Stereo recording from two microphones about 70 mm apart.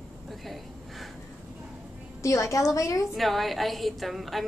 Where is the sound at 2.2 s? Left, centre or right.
Left.